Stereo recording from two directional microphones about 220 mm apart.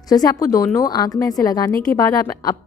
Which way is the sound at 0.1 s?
15° left (ahead or behind).